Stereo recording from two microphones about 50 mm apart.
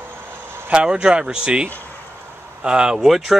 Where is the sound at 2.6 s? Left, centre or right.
Centre.